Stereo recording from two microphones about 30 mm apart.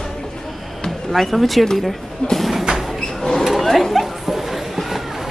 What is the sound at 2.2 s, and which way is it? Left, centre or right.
Speech, left.